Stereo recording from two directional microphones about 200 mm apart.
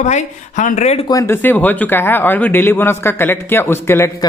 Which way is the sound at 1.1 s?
15° left (ahead or behind).